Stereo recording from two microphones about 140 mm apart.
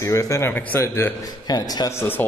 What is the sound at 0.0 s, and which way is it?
Speech, 20° left (ahead or behind).